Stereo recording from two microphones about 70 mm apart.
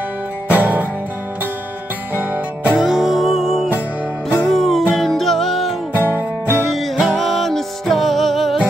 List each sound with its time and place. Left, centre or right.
0.5 s music: right
2.1 s music: right
2.8 s music: centre
5.9 s music: right
6.5 s music: centre